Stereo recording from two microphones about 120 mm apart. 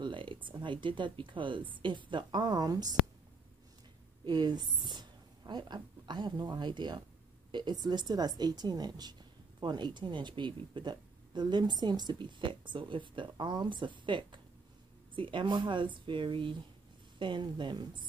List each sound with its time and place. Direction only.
0.0 s speech: 45° right (ahead or behind)
4.2 s a woman's voice: 35° right (ahead or behind)